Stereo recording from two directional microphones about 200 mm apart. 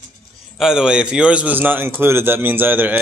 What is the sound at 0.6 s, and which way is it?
A man's voice, 5° right (ahead or behind).